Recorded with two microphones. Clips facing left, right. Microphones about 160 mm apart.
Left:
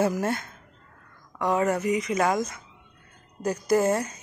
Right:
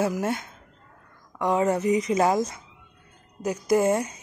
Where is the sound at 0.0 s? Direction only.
10° right (ahead or behind).